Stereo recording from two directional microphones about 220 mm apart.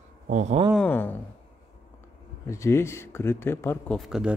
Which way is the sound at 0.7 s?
10° left (ahead or behind).